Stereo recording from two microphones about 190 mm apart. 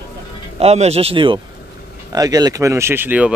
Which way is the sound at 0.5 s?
35° right (ahead or behind).